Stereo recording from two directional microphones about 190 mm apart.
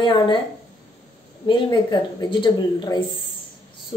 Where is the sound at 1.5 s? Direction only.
20° left (ahead or behind).